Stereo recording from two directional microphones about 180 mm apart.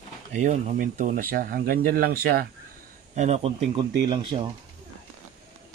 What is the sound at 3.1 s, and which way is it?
Speech, 40° right (ahead or behind).